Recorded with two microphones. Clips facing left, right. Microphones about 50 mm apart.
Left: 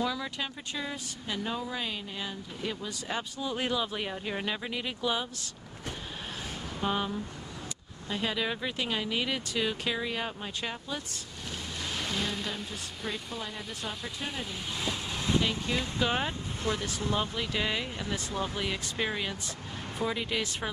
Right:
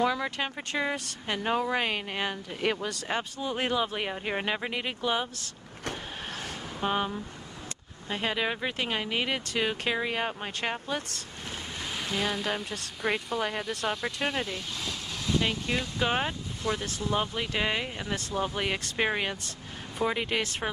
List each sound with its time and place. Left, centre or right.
0.0 s speech: right
3.1 s speech: right
5.9 s vehicle: right
6.8 s speech: right
8.1 s speech: right
11.8 s a sound: centre
12.4 s speech: right
14.8 s vehicle: left
16.0 s speech: right